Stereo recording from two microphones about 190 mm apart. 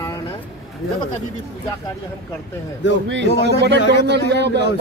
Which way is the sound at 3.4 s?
65° right (ahead or behind).